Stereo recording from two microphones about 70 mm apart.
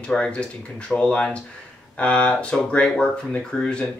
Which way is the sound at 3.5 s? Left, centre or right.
Centre.